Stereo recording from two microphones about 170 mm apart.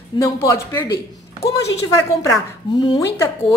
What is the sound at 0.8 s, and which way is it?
Speech, 75° left (ahead or behind).